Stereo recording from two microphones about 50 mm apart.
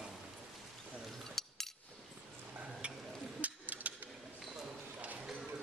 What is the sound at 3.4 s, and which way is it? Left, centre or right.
Mechanisms, right.